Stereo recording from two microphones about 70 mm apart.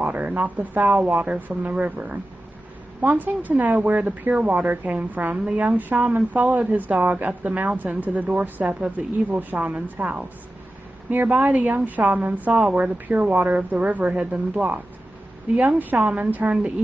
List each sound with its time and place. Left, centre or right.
0.0 s speech: right
11.2 s speech: centre